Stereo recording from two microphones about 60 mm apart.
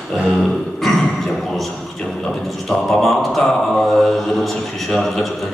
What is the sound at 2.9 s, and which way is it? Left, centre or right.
Speech, centre.